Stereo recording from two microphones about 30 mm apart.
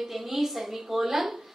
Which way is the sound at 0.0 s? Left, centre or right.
Centre.